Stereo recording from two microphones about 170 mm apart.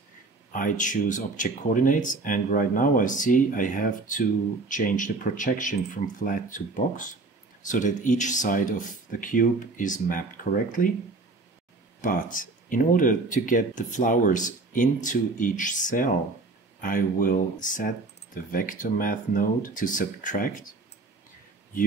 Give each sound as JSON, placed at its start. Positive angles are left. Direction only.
{"t": 0.5, "sound": "speech", "side_deg": 50}
{"t": 12.0, "sound": "speech", "side_deg": 55}